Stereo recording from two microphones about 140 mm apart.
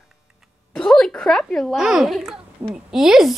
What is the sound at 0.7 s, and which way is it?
A child's voice, 5° left (ahead or behind).